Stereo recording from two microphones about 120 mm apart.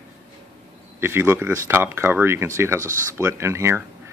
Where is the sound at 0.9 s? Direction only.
20° right (ahead or behind).